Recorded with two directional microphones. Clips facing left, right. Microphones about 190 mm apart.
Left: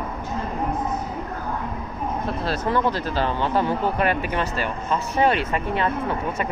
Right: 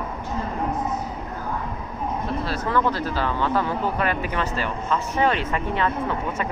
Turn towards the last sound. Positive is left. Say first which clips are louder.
# left 1 dB
turn(degrees=15)  # may be behind; listen again after turning